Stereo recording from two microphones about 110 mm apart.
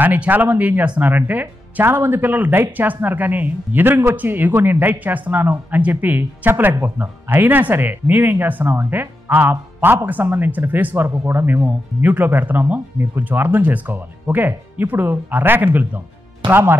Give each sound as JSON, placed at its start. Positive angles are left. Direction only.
{"t": 0.0, "sound": "speech", "side_deg": -15}